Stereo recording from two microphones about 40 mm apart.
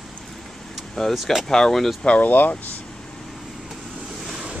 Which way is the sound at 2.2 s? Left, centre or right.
Left.